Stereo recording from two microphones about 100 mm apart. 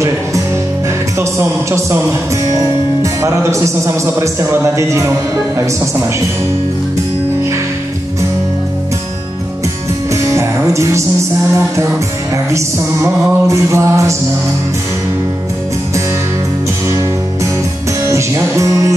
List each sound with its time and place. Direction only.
2.4 s a man's voice: 35° right (ahead or behind)
10.2 s music: 30° right (ahead or behind)
12.4 s music: 30° right (ahead or behind)
18.0 s music: 30° right (ahead or behind)